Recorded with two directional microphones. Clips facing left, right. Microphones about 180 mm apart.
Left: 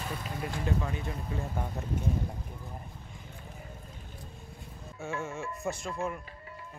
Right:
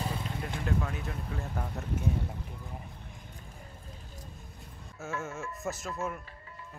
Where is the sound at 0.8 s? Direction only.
Centre (ahead or behind).